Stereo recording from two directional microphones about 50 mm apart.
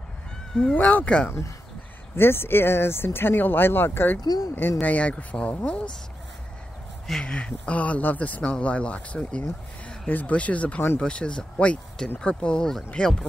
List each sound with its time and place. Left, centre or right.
0.7 s speech: left
2.1 s speech: left
4.8 s speech: left
7.1 s speech: centre
7.3 s speech: left
10.0 s speech: left; by 13.2 s centre